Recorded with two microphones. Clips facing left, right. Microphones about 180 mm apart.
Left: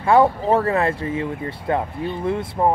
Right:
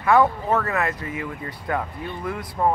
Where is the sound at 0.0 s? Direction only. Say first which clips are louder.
Left 3 dB; 30° left (ahead or behind).